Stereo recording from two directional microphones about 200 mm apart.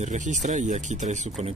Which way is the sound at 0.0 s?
35° right (ahead or behind).